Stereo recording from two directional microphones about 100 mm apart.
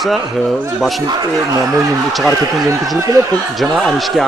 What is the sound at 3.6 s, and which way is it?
Speech, centre (ahead or behind).